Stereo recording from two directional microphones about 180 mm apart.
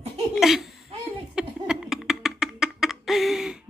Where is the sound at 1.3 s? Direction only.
5° right (ahead or behind).